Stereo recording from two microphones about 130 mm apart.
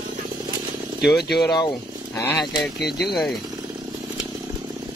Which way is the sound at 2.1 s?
15° left (ahead or behind).